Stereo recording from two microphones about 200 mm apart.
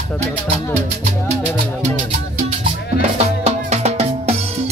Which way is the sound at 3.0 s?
30° right (ahead or behind).